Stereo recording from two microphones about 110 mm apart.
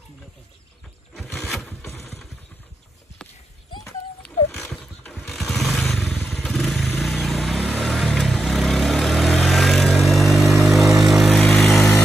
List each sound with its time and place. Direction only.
1.1 s a sound: centre (ahead or behind)
1.9 s vehicle: 25° left (ahead or behind)
5.3 s motorcycle: centre (ahead or behind)
7.0 s vehicle: centre (ahead or behind)